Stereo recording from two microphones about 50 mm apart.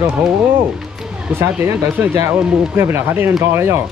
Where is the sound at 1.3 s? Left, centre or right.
Right.